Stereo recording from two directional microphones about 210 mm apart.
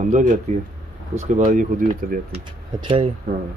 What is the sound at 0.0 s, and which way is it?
Speech, 35° right (ahead or behind).